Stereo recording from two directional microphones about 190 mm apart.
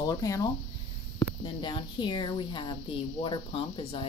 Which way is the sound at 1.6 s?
25° left (ahead or behind).